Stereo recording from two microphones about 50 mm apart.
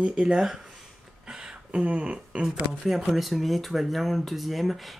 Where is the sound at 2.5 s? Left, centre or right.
Centre.